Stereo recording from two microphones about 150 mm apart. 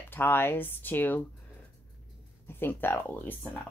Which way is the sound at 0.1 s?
15° left (ahead or behind).